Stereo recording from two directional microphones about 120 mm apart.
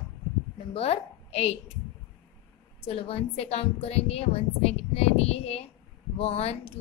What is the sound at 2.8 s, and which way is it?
Speech, 55° left (ahead or behind).